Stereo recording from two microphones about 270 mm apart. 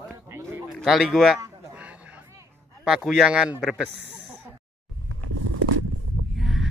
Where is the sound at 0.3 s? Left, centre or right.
Centre.